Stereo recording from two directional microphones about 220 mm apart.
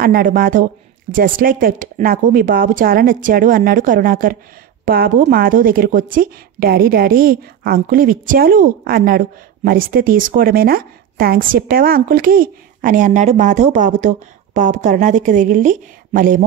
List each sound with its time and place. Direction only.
0.0 s speech: 40° right (ahead or behind)